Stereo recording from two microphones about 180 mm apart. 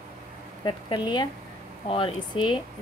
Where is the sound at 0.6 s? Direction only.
25° left (ahead or behind).